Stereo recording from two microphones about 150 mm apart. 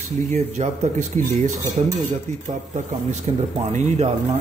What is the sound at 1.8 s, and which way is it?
Speech, 45° right (ahead or behind).